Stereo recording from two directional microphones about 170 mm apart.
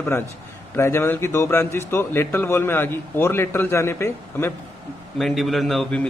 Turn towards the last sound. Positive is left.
turn(degrees=0)  # may be behind; listen again after turning